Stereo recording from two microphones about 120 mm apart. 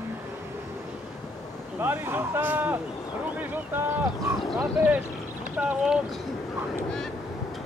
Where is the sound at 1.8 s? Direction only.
15° right (ahead or behind).